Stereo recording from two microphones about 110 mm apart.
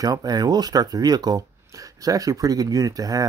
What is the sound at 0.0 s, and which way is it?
Speech, 35° right (ahead or behind).